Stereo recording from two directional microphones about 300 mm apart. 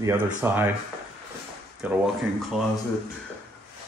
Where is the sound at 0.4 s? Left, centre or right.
Centre.